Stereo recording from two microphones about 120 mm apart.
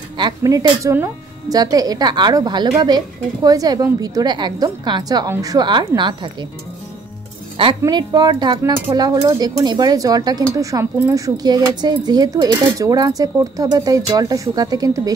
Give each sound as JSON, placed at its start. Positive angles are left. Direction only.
{"t": 0.4, "sound": "speech", "side_deg": -30}
{"t": 7.9, "sound": "speech", "side_deg": -35}